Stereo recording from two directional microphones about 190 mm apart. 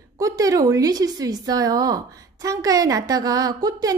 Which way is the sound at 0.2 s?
20° right (ahead or behind).